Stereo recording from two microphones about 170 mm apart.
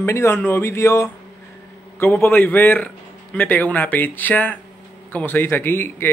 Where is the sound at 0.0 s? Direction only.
15° left (ahead or behind).